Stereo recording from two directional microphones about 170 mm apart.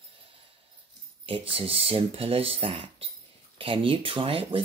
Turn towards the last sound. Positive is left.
turn(degrees=-30)  # may be behind; listen again after turning